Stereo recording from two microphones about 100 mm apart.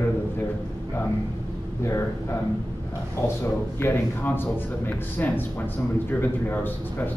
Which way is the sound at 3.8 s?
20° left (ahead or behind).